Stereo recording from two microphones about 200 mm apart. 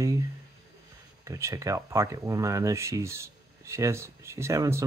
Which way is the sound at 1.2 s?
15° right (ahead or behind).